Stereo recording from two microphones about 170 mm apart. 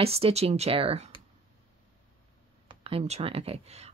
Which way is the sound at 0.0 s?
35° right (ahead or behind).